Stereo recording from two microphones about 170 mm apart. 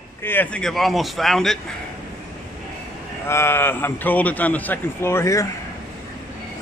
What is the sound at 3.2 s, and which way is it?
A man's voice, 15° left (ahead or behind).